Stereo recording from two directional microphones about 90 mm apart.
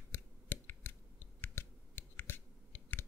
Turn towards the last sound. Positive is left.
turn(degrees=25)  # may be behind; listen again after turning